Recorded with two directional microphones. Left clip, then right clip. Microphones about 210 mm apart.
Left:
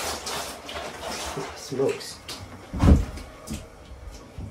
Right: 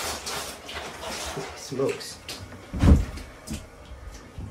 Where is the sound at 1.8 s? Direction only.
5° left (ahead or behind).